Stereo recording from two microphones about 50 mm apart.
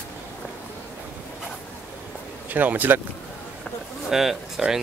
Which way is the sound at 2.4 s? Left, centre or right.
Right.